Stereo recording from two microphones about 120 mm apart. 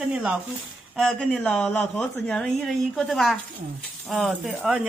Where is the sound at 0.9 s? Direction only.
5° left (ahead or behind).